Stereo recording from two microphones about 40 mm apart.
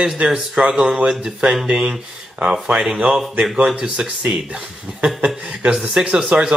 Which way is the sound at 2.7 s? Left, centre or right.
Centre.